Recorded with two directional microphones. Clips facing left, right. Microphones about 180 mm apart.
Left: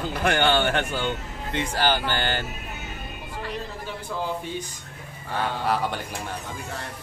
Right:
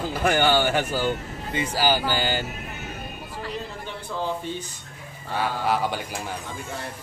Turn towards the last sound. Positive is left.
turn(degrees=0)  # may be behind; listen again after turning